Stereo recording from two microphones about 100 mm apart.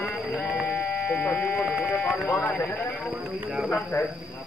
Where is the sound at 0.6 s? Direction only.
20° left (ahead or behind).